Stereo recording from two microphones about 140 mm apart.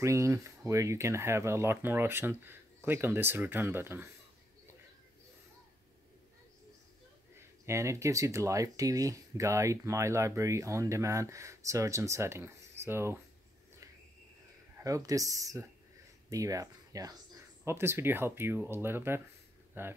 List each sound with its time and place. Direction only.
0.0 s speech: 20° right (ahead or behind)
7.6 s speech: 20° right (ahead or behind)
14.8 s speech: 25° right (ahead or behind)